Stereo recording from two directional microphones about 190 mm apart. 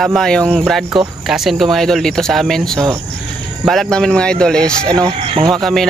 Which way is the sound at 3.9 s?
5° left (ahead or behind).